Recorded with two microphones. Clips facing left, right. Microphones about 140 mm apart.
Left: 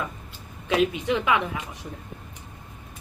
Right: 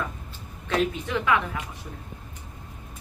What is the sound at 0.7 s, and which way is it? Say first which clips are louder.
Speech: left 3 dB; 15° left (ahead or behind).